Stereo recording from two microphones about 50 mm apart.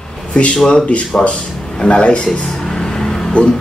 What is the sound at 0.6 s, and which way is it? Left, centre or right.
Speech, centre.